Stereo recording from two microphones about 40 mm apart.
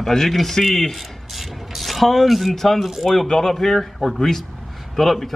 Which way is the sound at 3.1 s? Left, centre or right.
Centre.